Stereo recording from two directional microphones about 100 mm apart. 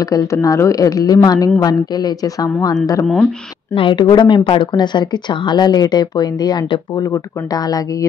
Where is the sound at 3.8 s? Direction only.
55° left (ahead or behind).